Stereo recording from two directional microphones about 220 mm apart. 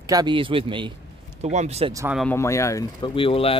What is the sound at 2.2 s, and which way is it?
Speech, 10° left (ahead or behind).